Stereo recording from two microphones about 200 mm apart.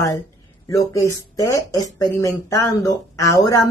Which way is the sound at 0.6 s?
15° left (ahead or behind).